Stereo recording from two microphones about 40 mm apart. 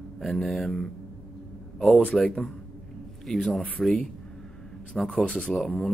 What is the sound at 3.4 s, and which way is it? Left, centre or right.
Speech, left.